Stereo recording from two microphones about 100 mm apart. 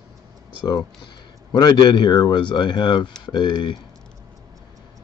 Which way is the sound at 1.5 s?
45° left (ahead or behind).